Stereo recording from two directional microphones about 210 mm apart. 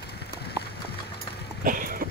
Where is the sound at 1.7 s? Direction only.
40° right (ahead or behind).